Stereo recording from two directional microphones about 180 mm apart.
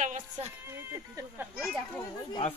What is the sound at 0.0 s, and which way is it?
Music, 40° right (ahead or behind).